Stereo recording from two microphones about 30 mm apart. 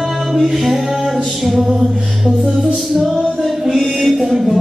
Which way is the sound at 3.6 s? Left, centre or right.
Centre.